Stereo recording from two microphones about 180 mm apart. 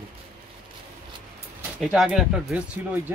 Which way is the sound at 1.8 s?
5° right (ahead or behind).